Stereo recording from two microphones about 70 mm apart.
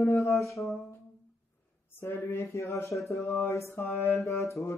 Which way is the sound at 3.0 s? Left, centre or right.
Left.